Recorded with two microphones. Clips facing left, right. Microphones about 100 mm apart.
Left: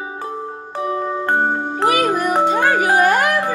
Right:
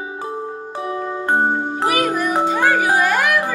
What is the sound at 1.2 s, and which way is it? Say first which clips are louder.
Music: right 1 dB; 20° right (ahead or behind).